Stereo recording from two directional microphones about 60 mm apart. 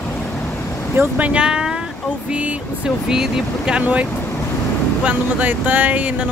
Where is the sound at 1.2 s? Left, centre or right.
Centre.